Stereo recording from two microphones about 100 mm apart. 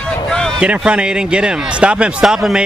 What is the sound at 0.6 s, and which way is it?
A man's voice, 10° right (ahead or behind).